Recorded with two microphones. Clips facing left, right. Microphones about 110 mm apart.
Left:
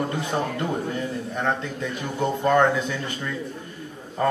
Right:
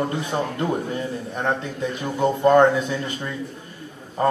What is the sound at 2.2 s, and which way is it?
A man's voice, 20° right (ahead or behind).